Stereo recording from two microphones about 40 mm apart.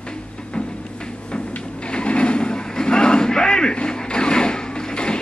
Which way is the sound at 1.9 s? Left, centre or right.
Left.